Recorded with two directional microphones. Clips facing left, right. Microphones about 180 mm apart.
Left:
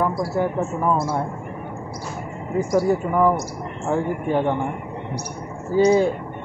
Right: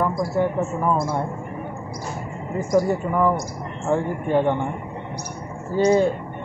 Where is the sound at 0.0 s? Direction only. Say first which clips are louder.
Even; 5° left (ahead or behind).